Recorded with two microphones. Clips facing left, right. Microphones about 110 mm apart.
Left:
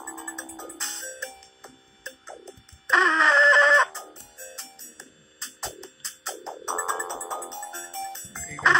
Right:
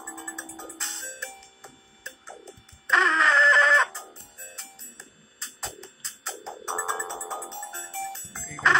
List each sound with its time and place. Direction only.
0.3 s music: centre (ahead or behind)
3.9 s music: 25° left (ahead or behind)
5.6 s music: centre (ahead or behind)